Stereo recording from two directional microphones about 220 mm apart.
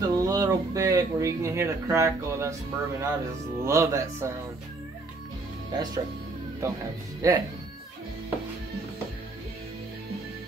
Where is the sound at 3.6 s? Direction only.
15° right (ahead or behind).